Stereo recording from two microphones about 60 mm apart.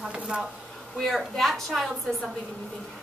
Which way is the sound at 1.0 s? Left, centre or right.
Centre.